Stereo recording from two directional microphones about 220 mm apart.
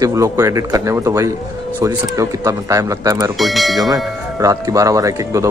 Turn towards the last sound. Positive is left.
turn(degrees=-15)  # may be behind; listen again after turning